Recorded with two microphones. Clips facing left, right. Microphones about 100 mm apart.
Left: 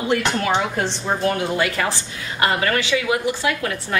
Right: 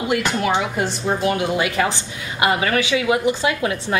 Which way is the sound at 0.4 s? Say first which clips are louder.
Right 1 dB; 10° right (ahead or behind).